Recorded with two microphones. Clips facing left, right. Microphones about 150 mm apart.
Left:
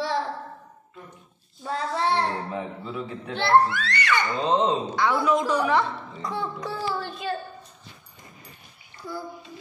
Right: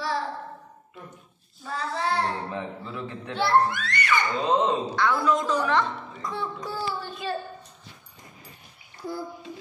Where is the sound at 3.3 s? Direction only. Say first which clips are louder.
Left 2 dB; 75° left (ahead or behind).